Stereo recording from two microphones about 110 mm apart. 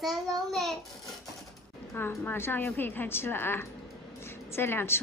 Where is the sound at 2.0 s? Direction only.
20° left (ahead or behind).